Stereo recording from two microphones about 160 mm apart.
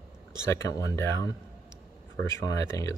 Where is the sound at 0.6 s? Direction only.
20° left (ahead or behind).